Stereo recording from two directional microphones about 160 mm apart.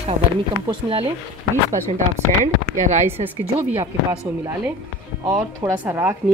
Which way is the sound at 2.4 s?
50° right (ahead or behind).